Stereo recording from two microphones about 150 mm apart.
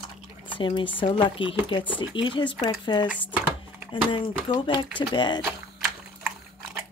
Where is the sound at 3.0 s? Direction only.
10° right (ahead or behind).